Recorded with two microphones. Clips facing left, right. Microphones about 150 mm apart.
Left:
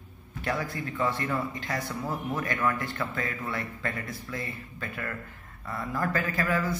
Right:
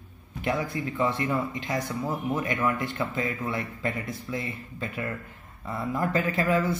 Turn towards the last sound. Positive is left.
turn(degrees=-25)  # may be behind; listen again after turning